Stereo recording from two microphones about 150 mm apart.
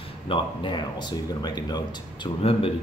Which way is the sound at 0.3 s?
30° left (ahead or behind).